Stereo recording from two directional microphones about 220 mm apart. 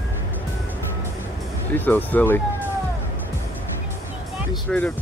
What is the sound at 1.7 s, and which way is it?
Speech, 10° left (ahead or behind).